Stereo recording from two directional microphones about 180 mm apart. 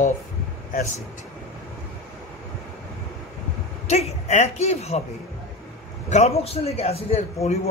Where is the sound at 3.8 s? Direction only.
40° left (ahead or behind).